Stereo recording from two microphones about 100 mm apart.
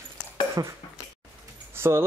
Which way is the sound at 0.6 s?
35° right (ahead or behind).